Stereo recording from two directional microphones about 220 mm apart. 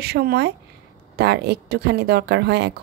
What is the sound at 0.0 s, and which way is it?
A woman's voice, 45° right (ahead or behind).